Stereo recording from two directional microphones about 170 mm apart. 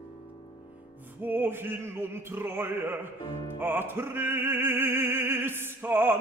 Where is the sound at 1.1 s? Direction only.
10° right (ahead or behind).